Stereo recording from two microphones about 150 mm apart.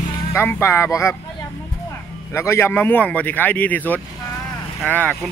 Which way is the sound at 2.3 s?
15° left (ahead or behind).